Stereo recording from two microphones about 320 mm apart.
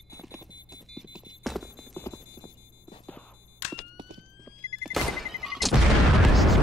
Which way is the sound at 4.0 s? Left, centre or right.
Centre.